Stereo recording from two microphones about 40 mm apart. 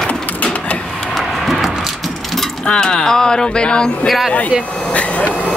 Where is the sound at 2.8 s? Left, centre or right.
Centre.